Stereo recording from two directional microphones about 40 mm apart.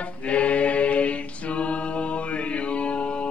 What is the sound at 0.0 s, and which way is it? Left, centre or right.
Mantra, left.